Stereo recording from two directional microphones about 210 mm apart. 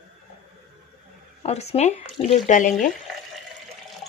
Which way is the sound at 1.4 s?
30° left (ahead or behind).